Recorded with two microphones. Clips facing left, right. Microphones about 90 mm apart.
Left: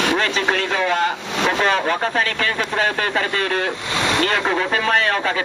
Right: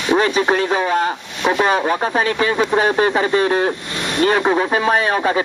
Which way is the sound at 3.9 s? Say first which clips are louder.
Left 1 dB; 90° left.